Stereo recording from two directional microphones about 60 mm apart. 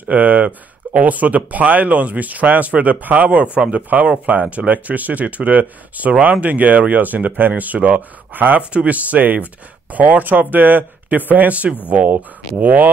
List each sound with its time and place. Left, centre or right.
0.1 s speech: right